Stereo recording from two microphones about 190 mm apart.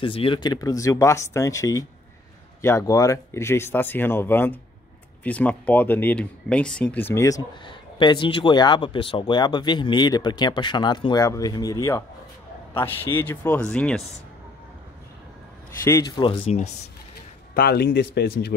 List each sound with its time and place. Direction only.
0.0 s speech: 30° left (ahead or behind); by 14.0 s 5° left (ahead or behind)
15.8 s speech: 15° left (ahead or behind)
16.2 s speech: 30° left (ahead or behind)
17.6 s speech: 55° left (ahead or behind)